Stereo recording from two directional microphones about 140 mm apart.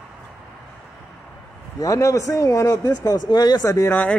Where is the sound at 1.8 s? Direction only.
20° left (ahead or behind).